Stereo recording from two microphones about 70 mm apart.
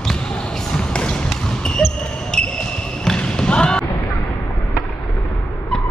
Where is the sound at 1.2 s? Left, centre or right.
Centre.